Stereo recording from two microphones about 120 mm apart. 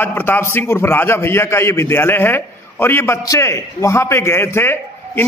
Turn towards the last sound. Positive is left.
turn(degrees=20)  # may be behind; listen again after turning